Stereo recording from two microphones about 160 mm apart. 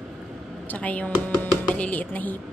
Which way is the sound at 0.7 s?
10° left (ahead or behind).